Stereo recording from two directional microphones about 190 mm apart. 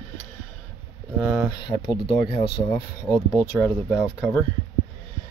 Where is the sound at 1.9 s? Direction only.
25° left (ahead or behind).